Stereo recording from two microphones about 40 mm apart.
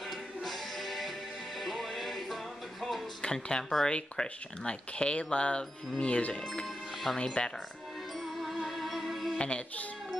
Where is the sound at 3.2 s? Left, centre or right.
Left.